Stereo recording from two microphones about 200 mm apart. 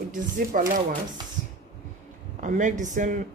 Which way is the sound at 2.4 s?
40° right (ahead or behind).